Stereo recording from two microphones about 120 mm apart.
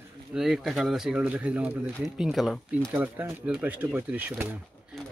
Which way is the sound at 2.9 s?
15° right (ahead or behind).